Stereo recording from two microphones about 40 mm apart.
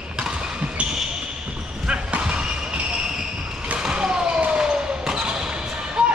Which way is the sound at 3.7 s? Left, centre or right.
Right.